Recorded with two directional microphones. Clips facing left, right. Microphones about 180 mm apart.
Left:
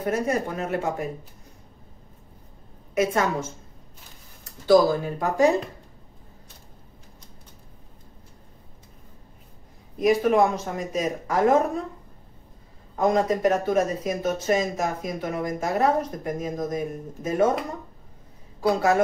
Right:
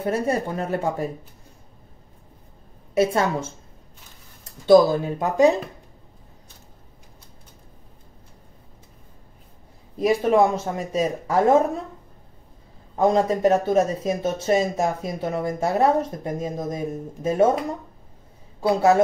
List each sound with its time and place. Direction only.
0.0 s speech: 30° right (ahead or behind)
2.9 s a woman's voice: 30° right (ahead or behind)
4.5 s speech: 25° right (ahead or behind)
9.9 s speech: 30° right (ahead or behind)
12.9 s speech: 30° right (ahead or behind)
18.6 s speech: 25° right (ahead or behind)